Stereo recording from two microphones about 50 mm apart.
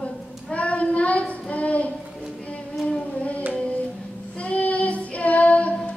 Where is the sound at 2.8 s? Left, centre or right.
Left.